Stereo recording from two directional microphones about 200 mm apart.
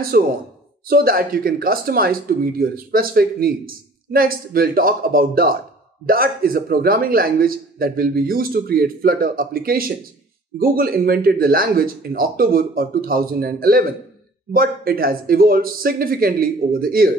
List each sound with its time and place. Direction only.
0.1 s speech: 50° right (ahead or behind)